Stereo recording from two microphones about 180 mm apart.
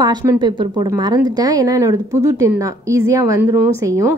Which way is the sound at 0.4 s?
25° right (ahead or behind).